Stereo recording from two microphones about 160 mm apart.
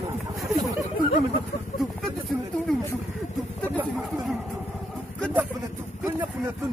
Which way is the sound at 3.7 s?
Centre (ahead or behind).